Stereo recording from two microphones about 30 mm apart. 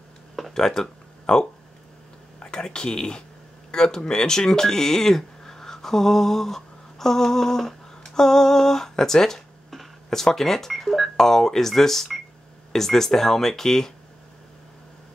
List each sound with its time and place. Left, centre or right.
0.6 s speech: centre
2.4 s speech: left